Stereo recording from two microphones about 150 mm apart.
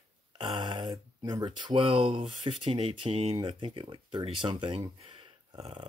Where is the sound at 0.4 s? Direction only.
35° right (ahead or behind).